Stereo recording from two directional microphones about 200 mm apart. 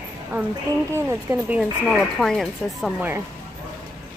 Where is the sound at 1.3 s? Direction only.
10° right (ahead or behind).